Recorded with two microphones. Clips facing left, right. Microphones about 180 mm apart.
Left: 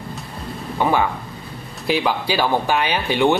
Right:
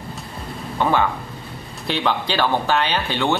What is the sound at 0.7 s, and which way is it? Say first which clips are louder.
Speech: even; 10° left (ahead or behind).